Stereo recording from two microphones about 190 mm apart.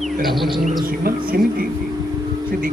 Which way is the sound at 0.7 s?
50° right (ahead or behind).